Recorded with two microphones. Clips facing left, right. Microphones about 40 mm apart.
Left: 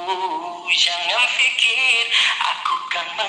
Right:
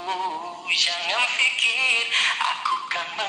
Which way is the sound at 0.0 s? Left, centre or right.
Left.